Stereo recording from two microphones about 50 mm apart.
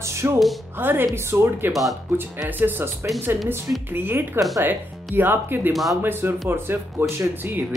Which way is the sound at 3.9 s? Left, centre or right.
Right.